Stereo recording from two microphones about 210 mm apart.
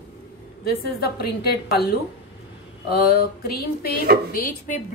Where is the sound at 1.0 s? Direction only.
50° left (ahead or behind).